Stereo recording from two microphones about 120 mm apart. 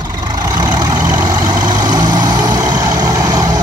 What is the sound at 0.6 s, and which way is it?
Vehicle, 35° right (ahead or behind).